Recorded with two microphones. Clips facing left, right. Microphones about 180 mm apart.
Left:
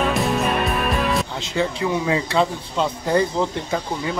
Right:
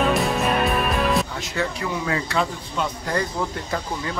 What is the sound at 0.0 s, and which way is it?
Music, centre (ahead or behind).